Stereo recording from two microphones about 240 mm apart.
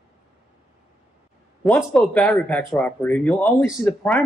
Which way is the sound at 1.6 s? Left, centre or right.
Centre.